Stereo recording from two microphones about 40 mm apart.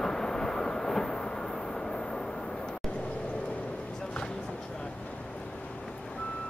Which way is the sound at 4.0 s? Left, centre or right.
Left.